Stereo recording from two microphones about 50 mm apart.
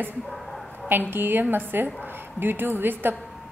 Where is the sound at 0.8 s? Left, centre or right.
Right.